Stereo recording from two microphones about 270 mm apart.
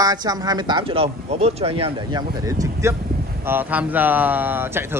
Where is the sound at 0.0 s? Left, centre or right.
Centre.